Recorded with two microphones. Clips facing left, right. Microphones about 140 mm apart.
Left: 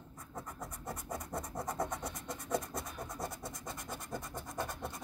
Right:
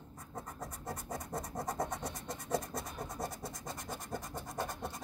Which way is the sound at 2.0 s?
25° right (ahead or behind).